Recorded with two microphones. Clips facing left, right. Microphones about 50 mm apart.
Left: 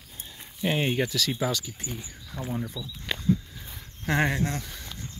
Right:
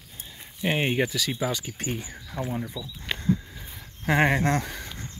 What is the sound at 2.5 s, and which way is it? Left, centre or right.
Speech, centre.